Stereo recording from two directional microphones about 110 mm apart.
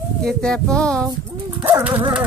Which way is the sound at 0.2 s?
5° left (ahead or behind).